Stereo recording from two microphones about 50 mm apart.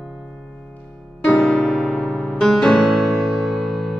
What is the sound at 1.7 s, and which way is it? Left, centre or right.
Music, centre.